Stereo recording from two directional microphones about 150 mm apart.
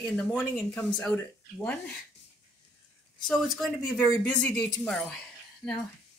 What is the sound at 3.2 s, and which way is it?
A woman's voice, 5° left (ahead or behind).